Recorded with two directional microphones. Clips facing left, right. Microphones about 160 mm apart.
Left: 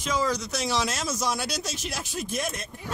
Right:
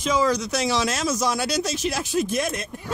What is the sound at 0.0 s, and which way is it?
Speech, 90° right.